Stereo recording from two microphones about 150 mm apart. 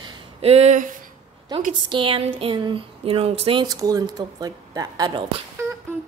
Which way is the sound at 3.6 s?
25° right (ahead or behind).